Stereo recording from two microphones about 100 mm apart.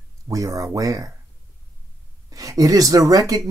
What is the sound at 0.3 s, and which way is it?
Speech, 35° right (ahead or behind).